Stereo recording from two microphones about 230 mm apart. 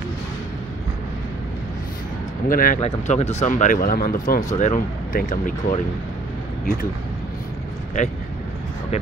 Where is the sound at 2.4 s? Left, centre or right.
Left.